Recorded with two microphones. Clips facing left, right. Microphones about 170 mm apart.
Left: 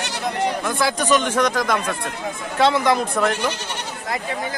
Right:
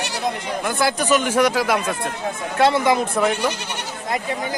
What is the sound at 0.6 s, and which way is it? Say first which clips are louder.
Speech: right 1 dB; centre (ahead or behind).